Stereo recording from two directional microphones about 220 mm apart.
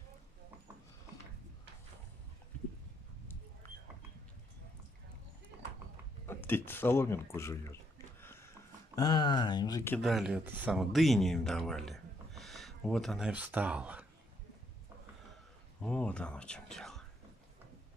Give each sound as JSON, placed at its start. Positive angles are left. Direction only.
{"t": 6.2, "sound": "speech", "side_deg": 10}
{"t": 8.2, "sound": "a sound", "side_deg": 10}
{"t": 9.9, "sound": "speech", "side_deg": 0}
{"t": 15.8, "sound": "speech", "side_deg": 5}